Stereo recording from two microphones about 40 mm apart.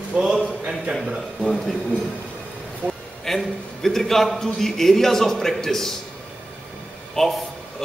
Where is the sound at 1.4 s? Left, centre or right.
Centre.